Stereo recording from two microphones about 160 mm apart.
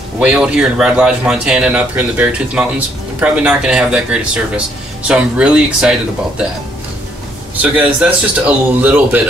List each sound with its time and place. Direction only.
0.2 s speech: 5° right (ahead or behind)
7.5 s speech: 10° right (ahead or behind)